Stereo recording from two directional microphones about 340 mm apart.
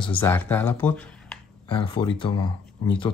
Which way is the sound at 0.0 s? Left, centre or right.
Centre.